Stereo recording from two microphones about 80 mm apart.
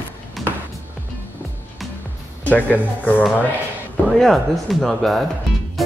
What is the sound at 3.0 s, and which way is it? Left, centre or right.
Speech, left.